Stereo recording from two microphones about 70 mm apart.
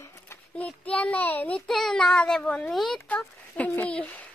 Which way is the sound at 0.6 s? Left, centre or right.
Centre.